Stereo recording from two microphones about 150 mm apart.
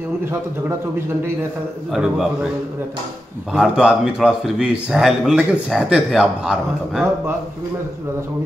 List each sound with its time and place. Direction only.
0.2 s a man's voice: 15° right (ahead or behind)
1.9 s a man's voice: 5° right (ahead or behind)
3.5 s a man's voice: 5° right (ahead or behind)